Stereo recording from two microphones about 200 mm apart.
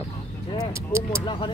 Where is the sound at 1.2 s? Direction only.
25° left (ahead or behind).